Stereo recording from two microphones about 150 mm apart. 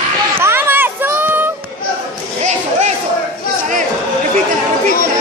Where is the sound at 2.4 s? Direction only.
50° right (ahead or behind).